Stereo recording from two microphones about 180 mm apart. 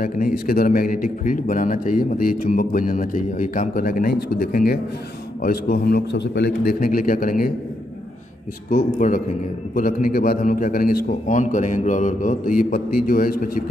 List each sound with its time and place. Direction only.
0.0 s a man's voice: 50° left (ahead or behind)
8.6 s a man's voice: 50° left (ahead or behind)